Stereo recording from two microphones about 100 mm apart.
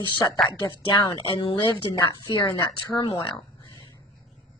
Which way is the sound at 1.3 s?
60° left (ahead or behind).